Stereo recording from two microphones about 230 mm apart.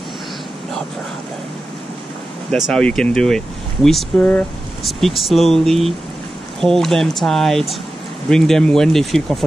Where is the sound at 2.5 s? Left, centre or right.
Centre.